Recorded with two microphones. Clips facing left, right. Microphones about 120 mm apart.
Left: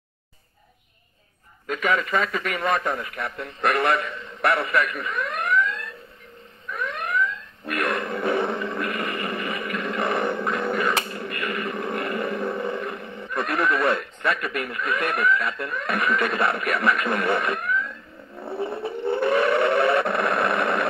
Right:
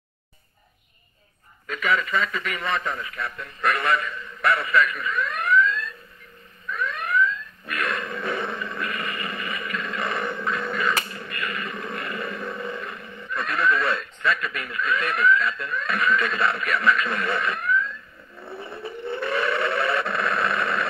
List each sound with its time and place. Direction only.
1.7 s a man's voice: 45° left (ahead or behind)
3.3 s a man's voice: 65° left (ahead or behind)
5.0 s alarm: 55° left (ahead or behind)
6.8 s alarm clock: 60° left (ahead or behind)
7.6 s dog: 55° left (ahead or behind)
8.5 s a sound: 50° left (ahead or behind)
11.1 s speech: 55° left (ahead or behind)
18.3 s a sound: 60° left (ahead or behind)